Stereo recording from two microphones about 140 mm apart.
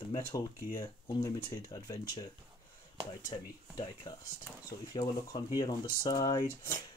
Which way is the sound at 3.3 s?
30° left (ahead or behind).